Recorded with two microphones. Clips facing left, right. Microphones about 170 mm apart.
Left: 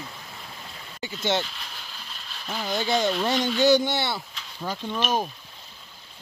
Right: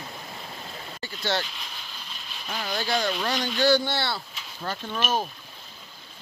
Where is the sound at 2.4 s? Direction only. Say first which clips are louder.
Left 2 dB; centre (ahead or behind).